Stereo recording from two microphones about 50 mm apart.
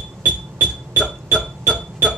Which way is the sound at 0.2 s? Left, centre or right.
Left.